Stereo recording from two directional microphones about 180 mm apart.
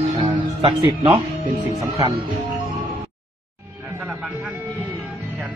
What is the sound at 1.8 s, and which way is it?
Speech, 20° right (ahead or behind).